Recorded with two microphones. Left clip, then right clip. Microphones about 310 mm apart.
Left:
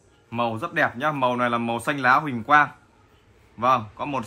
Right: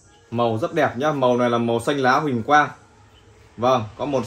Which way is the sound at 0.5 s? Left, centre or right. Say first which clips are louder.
Right 3 dB; centre.